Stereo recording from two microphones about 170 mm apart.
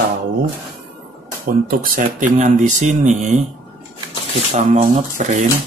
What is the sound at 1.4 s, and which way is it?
Speech, 55° right (ahead or behind).